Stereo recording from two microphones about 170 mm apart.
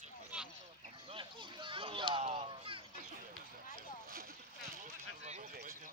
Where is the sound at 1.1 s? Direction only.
30° right (ahead or behind).